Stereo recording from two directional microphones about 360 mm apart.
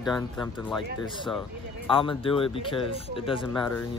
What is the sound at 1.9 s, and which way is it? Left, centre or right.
Speech, centre.